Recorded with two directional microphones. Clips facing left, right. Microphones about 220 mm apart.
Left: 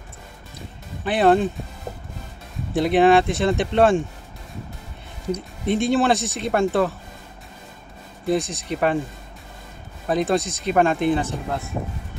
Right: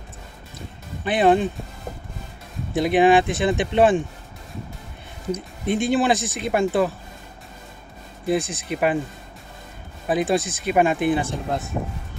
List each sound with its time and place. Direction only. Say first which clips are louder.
1.0 s speech: left 1 dB; centre (ahead or behind)
2.7 s speech: left 1 dB; centre (ahead or behind)
5.7 s speech: left 1 dB; centre (ahead or behind)
8.3 s speech: even; 5° right (ahead or behind)
10.0 s speech: even; 5° right (ahead or behind)